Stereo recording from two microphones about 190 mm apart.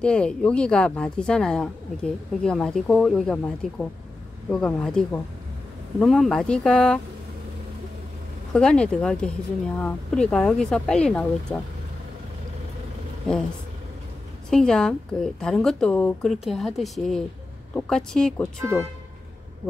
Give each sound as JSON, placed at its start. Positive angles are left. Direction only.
{"t": 0.0, "sound": "a woman's voice", "side_deg": 5}
{"t": 8.5, "sound": "a woman's voice", "side_deg": 5}
{"t": 14.5, "sound": "a woman's voice", "side_deg": 5}